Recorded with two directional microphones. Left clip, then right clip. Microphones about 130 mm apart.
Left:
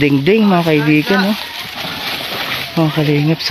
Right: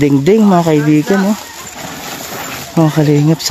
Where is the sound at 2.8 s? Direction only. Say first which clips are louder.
Right 5 dB; 50° right (ahead or behind).